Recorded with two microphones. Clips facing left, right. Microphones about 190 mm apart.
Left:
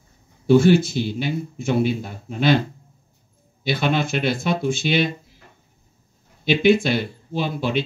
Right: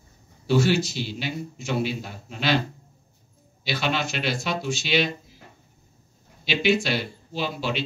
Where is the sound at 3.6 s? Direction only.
50° left (ahead or behind).